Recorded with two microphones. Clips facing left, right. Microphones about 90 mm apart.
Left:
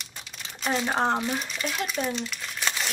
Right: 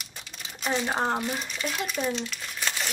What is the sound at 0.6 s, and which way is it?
Speech, centre (ahead or behind).